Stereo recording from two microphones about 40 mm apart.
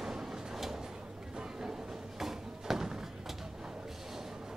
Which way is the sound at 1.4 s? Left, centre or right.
Centre.